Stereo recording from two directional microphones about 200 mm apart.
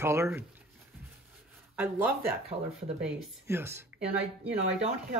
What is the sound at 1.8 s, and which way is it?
Speech, 10° right (ahead or behind).